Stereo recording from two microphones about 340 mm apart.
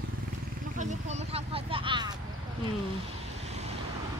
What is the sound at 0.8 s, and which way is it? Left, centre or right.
Speech, centre.